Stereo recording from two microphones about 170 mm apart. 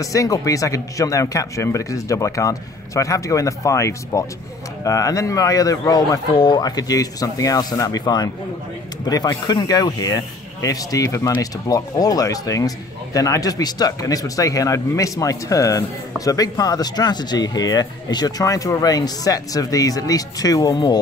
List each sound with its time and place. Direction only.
0.0 s speech: 20° left (ahead or behind)